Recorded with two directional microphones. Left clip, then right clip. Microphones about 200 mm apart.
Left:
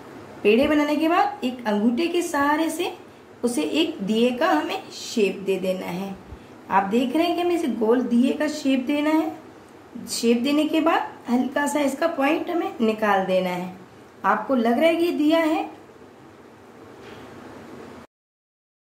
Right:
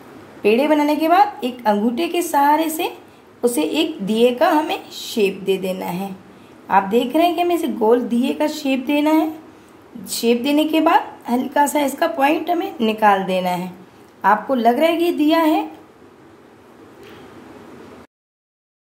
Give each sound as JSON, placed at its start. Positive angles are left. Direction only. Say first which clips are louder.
{"t": 0.4, "sound": "a woman's voice", "louder": "right 3 dB", "side_deg": -40}